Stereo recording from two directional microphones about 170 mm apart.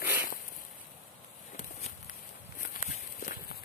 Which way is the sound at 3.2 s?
50° left (ahead or behind).